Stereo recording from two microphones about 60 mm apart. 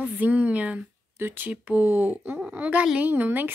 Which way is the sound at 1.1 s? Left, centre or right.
Right.